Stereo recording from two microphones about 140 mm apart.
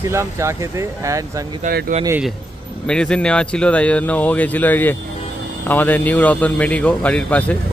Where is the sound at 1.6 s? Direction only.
70° right (ahead or behind).